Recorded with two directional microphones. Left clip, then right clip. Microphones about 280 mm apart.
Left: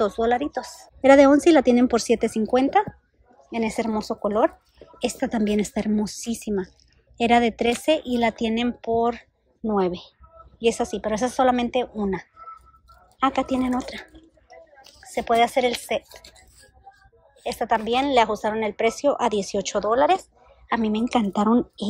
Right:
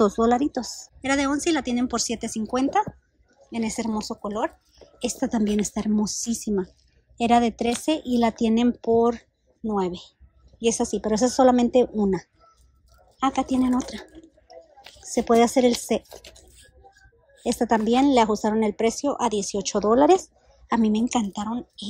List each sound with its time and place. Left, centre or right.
0.0 s speech: centre
1.0 s a woman's voice: centre
15.0 s a woman's voice: centre